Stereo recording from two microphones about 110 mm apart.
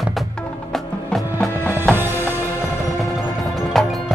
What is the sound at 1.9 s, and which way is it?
Music, 20° right (ahead or behind).